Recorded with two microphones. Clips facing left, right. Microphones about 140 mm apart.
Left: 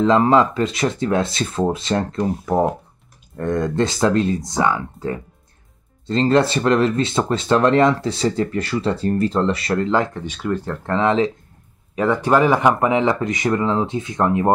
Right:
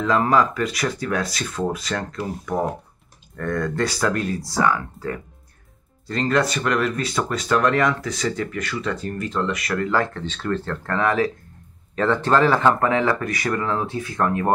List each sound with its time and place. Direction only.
0.0 s speech: 25° left (ahead or behind)